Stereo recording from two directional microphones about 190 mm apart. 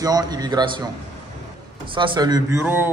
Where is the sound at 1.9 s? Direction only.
25° right (ahead or behind).